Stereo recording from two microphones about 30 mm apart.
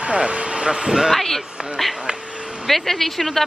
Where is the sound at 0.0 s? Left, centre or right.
Right.